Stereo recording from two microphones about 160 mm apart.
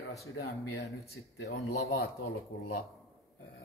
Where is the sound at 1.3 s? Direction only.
90° left.